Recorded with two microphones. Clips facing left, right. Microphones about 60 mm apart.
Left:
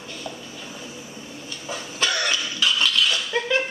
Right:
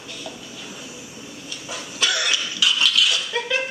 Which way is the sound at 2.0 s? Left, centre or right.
Left.